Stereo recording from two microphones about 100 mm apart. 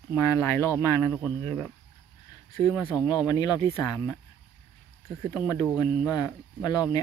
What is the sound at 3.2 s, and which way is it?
Speech, 40° left (ahead or behind).